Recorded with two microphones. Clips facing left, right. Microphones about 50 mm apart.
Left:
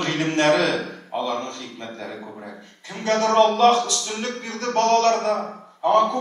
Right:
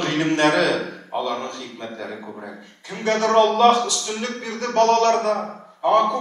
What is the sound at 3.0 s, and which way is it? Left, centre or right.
Speech, right.